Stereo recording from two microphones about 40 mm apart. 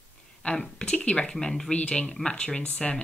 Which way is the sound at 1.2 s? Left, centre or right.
Centre.